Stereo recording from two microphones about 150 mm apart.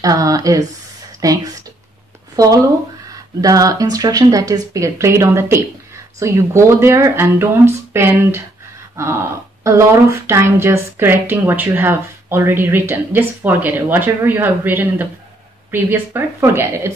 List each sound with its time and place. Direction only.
0.0 s speech: 25° right (ahead or behind)